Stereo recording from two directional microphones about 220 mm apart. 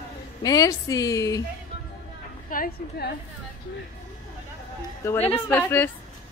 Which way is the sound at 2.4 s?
40° left (ahead or behind).